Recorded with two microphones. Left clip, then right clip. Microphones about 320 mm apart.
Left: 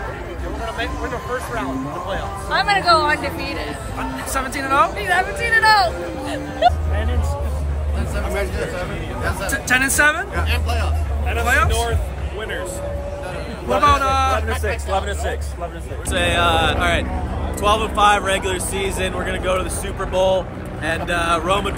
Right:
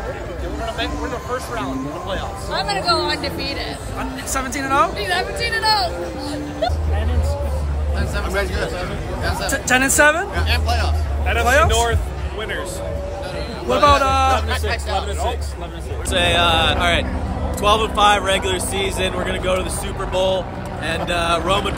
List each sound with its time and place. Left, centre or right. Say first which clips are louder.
1.5 s speech: even; centre
2.5 s a woman's voice: left 4 dB; centre
9.4 s speech: right 1 dB; centre
13.7 s speech: right 1 dB; centre
16.1 s speech: right 1 dB; centre
20.2 s a woman's voice: left 2 dB; centre
20.8 s speech: even; centre